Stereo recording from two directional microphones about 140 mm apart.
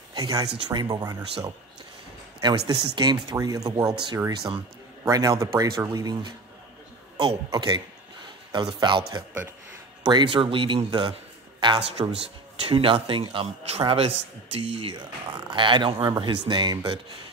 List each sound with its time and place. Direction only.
0.1 s speech: 25° right (ahead or behind)
2.4 s speech: 30° right (ahead or behind)
7.5 s a man's voice: 35° right (ahead or behind)